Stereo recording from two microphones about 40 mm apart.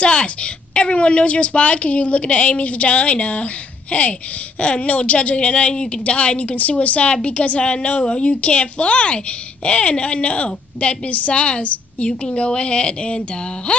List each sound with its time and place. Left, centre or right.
0.0 s a woman's voice: left